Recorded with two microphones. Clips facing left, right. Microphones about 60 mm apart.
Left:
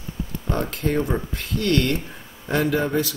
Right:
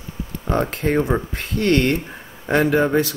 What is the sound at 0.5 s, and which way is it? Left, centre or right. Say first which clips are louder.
Speech: right 4 dB; right.